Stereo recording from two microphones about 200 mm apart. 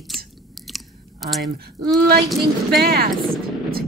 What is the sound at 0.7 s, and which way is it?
Chewing, centre (ahead or behind).